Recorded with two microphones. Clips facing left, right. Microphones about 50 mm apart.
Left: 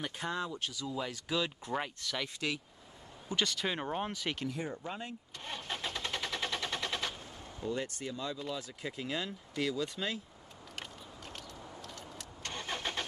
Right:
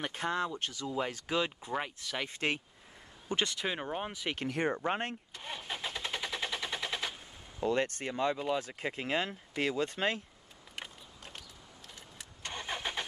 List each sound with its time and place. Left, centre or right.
0.0 s speech: right
1.6 s speech: centre
2.2 s speech: right
3.3 s speech: right
3.6 s speech: centre
4.1 s speech: centre
4.5 s speech: right
5.4 s vehicle: centre
7.6 s speech: right
10.8 s vehicle: centre